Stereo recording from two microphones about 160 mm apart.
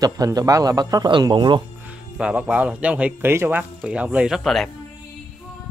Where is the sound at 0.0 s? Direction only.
25° right (ahead or behind).